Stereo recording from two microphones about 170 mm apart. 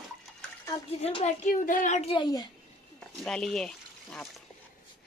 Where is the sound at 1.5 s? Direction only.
50° left (ahead or behind); by 2.5 s 25° left (ahead or behind).